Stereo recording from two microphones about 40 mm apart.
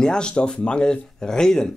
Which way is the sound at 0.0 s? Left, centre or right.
Left.